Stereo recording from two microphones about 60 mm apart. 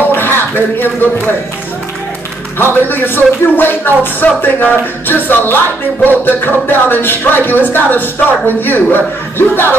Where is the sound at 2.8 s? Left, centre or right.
Left.